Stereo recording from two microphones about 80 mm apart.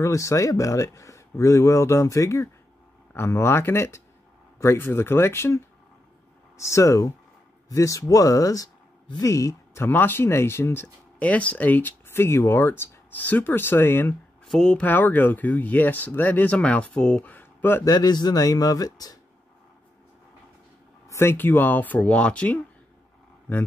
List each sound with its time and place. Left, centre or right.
0.0 s speech: left
6.6 s speech: left
9.8 s speech: left
11.1 s speech: centre
13.1 s speech: left
14.4 s speech: centre
14.8 s speech: left
17.8 s speech: left
21.1 s speech: left